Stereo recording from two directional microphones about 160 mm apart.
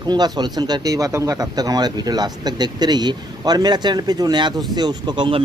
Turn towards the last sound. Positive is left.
turn(degrees=-30)  # may be behind; listen again after turning